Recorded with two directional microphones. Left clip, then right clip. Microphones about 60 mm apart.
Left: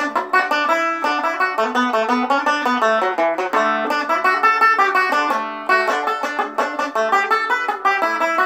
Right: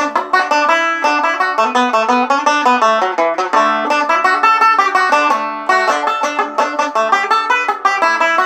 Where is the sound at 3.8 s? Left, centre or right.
Centre.